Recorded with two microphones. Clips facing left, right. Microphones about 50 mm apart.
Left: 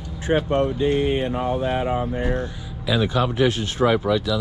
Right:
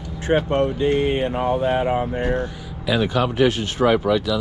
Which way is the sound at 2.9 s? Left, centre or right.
Right.